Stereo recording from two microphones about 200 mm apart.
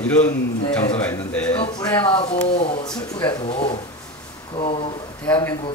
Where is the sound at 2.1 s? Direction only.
30° left (ahead or behind).